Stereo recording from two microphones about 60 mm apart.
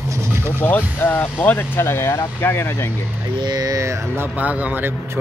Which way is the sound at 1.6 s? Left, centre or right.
Left.